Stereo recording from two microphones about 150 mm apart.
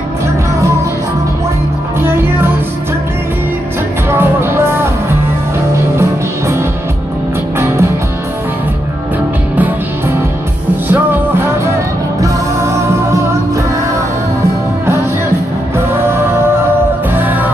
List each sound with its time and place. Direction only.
2.0 s music: 15° right (ahead or behind)
4.1 s music: 15° right (ahead or behind)
9.6 s music: 15° right (ahead or behind)
17.1 s music: 10° right (ahead or behind)